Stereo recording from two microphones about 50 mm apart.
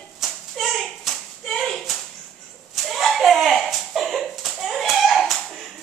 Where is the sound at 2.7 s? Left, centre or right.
Centre.